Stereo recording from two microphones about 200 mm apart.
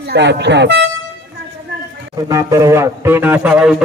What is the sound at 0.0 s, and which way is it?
Speech, 55° right (ahead or behind).